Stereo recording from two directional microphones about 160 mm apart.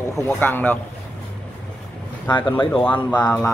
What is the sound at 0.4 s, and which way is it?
Speech, 10° left (ahead or behind).